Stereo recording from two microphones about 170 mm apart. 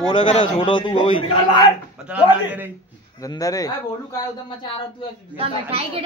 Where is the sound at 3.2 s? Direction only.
20° left (ahead or behind).